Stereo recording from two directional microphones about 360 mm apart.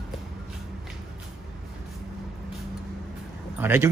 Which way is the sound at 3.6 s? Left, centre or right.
Centre.